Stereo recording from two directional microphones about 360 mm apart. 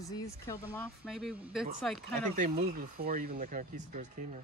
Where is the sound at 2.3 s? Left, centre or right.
Centre.